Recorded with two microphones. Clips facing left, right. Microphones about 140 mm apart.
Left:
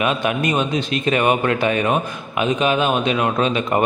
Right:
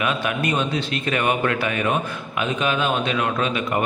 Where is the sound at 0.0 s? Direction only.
20° left (ahead or behind).